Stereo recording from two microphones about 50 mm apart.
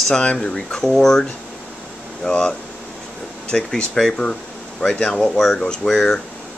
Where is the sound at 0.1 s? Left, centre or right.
Centre.